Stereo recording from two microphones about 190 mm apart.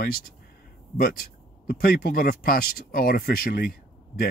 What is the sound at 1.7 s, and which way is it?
Speech, 45° left (ahead or behind).